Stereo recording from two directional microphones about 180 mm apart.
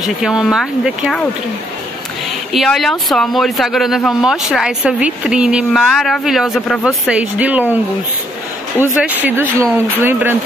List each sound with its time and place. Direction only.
0.0 s speech: centre (ahead or behind)
2.5 s speech: centre (ahead or behind)
8.9 s speech: 10° right (ahead or behind)